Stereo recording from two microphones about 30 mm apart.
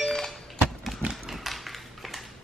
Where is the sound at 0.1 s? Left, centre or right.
Centre.